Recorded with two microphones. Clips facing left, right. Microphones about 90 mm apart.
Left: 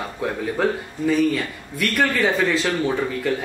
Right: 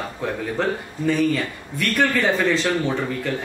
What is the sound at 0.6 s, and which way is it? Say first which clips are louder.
Speech: left 3 dB; 5° left (ahead or behind).